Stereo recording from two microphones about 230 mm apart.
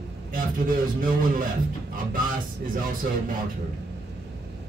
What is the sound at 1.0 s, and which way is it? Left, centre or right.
Speech, right.